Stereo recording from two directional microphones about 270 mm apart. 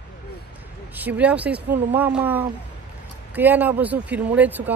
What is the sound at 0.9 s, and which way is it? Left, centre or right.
Speech, centre.